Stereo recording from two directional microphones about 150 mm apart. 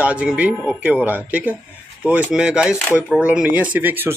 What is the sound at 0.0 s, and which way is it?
A man's voice, 10° right (ahead or behind).